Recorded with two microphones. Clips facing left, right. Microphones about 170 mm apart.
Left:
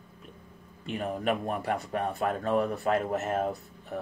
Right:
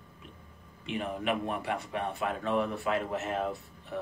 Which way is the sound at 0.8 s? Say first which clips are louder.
Left 2 dB; 40° left (ahead or behind).